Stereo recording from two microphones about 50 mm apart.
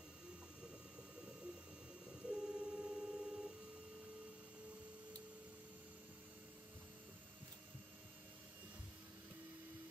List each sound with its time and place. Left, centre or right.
2.0 s printer: centre